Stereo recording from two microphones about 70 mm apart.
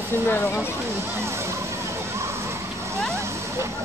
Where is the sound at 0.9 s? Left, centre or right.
Right.